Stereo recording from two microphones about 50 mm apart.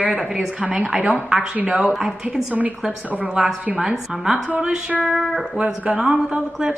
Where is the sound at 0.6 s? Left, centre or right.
Right; by 4.5 s centre.